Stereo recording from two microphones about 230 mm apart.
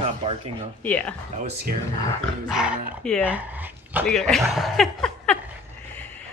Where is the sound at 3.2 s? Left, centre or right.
Centre.